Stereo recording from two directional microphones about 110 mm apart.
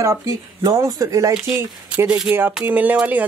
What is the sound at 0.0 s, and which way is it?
Speech, 30° right (ahead or behind).